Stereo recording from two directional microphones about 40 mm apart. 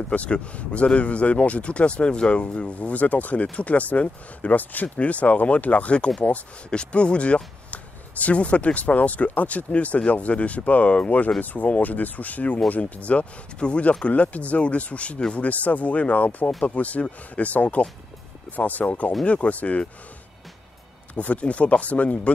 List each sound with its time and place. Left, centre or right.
0.1 s speech: left
21.1 s speech: left